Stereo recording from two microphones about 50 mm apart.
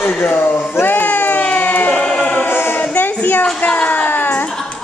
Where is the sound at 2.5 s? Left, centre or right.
Left.